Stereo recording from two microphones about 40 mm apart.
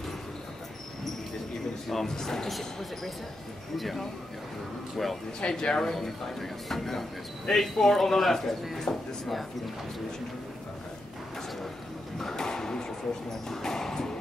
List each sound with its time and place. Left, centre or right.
1.9 s speech: centre
5.5 s speech: left
5.8 s speech: centre
12.2 s a sound: centre